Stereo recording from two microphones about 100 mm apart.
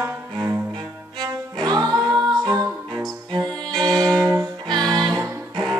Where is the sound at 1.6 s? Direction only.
40° right (ahead or behind).